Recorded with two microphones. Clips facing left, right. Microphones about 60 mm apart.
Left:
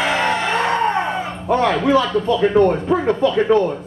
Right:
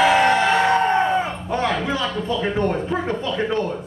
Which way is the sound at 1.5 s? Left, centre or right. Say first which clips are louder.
Left 7 dB; left.